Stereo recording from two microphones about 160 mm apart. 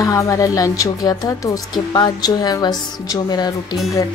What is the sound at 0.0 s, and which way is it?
Speech, 20° left (ahead or behind).